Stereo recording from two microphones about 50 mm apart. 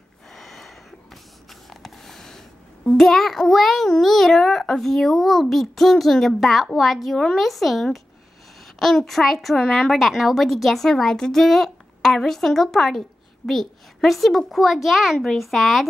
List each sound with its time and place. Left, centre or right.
0.3 s a sound: centre
1.5 s a child's voice: centre
10.9 s speech: centre